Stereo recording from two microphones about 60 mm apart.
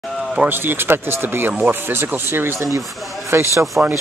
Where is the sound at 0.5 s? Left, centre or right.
Right.